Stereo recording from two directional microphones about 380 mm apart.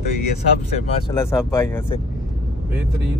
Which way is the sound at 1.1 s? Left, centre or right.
Centre.